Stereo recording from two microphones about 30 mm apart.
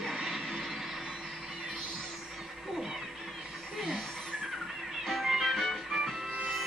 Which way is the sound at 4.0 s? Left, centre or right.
Left.